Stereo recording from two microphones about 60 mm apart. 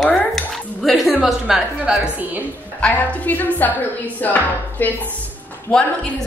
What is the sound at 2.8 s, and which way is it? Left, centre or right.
Chopping, left.